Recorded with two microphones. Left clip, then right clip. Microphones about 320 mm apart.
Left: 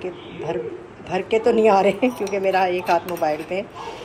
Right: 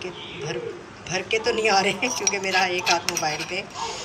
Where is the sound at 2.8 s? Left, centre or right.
Left.